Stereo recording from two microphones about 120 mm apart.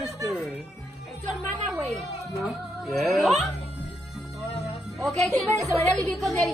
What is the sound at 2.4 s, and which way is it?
Music, centre (ahead or behind).